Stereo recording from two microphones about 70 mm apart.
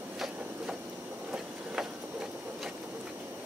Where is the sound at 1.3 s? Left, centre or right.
Centre.